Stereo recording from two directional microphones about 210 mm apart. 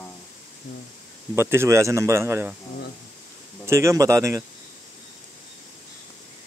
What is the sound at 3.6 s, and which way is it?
Speech, 15° right (ahead or behind).